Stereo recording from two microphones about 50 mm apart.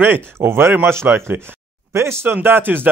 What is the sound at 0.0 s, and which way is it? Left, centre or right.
Speech, right.